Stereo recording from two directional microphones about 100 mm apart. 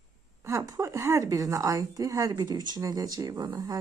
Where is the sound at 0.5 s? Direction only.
30° right (ahead or behind).